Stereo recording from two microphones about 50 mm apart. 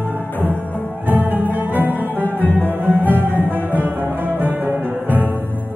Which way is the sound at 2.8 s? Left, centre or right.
Right.